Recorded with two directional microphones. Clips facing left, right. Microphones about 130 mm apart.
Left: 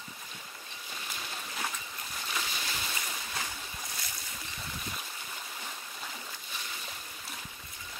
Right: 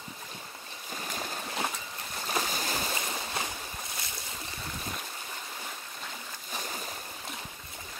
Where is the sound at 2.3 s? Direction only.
40° right (ahead or behind).